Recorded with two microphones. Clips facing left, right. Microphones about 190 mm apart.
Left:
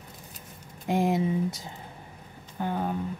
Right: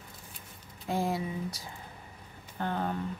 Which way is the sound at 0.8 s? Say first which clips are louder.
Left 6 dB; 20° left (ahead or behind).